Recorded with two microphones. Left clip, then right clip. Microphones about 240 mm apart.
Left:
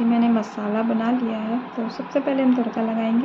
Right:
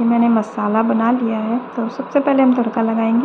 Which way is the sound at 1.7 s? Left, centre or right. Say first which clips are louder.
Right 7 dB; centre.